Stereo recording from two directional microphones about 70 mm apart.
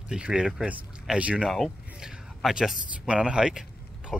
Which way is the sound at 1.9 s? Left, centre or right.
Centre.